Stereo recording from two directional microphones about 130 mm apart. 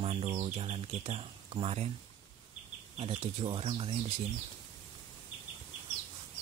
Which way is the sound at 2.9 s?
45° right (ahead or behind).